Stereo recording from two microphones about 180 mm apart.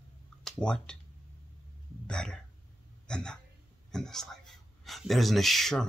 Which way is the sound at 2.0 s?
5° left (ahead or behind).